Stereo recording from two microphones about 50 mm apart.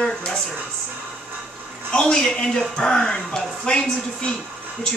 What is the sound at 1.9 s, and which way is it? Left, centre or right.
A woman's voice, centre.